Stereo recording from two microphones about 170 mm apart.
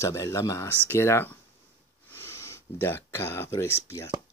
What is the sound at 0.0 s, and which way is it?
Speech, 20° left (ahead or behind).